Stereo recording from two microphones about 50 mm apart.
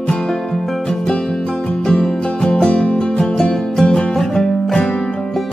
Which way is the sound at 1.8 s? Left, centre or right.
Centre.